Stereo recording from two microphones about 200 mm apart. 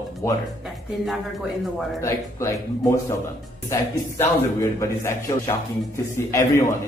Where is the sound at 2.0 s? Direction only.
15° left (ahead or behind).